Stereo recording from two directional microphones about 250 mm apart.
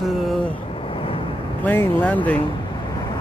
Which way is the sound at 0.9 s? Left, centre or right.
Left.